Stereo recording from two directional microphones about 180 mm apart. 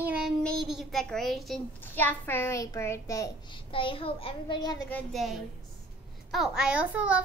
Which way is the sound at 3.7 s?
30° left (ahead or behind).